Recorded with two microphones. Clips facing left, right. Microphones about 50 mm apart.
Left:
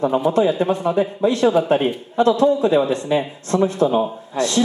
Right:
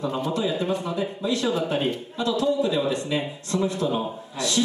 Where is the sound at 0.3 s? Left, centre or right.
Left.